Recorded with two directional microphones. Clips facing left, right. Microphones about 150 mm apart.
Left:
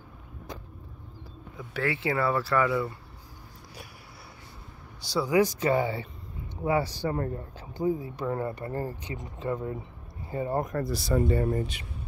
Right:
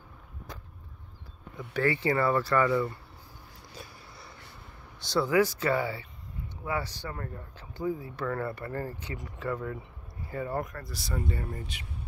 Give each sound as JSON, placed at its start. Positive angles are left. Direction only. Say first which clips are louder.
{"t": 1.6, "sound": "speech", "louder": "right 2 dB", "side_deg": 0}
{"t": 5.0, "sound": "speech", "louder": "left 1 dB", "side_deg": 10}
{"t": 7.1, "sound": "speech", "louder": "left 9 dB", "side_deg": 30}
{"t": 7.5, "sound": "speech", "louder": "left 3 dB", "side_deg": 15}
{"t": 11.1, "sound": "speech", "louder": "left 9 dB", "side_deg": 40}